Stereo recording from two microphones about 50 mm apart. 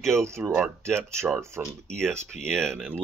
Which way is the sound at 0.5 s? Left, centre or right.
Right.